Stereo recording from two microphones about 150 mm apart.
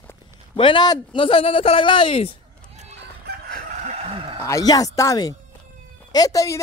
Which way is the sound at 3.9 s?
40° right (ahead or behind).